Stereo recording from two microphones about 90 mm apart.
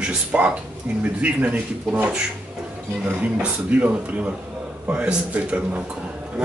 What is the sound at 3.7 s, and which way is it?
Speech, 15° right (ahead or behind).